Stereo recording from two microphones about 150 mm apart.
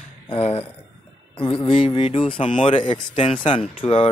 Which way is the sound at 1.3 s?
35° left (ahead or behind).